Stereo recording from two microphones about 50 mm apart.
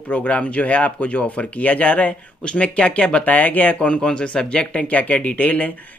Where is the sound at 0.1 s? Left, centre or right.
Left.